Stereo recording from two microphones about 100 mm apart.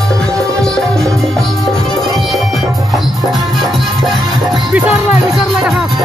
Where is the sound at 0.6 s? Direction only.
5° left (ahead or behind).